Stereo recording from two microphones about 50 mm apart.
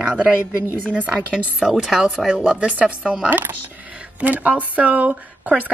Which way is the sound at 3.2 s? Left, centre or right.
Right.